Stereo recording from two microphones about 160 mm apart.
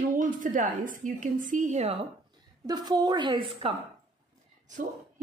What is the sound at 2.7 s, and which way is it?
A woman's voice, 25° right (ahead or behind).